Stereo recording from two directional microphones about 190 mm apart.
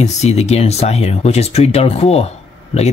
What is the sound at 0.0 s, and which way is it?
Speech, 35° left (ahead or behind).